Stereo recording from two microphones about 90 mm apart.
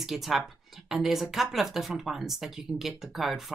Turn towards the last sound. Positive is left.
turn(degrees=0)  # may be behind; listen again after turning